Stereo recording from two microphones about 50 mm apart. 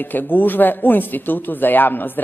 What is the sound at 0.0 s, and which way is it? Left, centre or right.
Speech, left.